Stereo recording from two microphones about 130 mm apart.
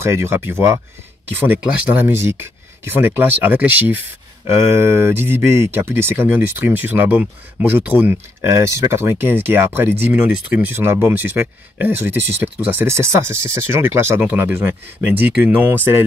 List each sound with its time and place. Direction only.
0.0 s speech: 20° right (ahead or behind)
8.4 s speech: 25° right (ahead or behind)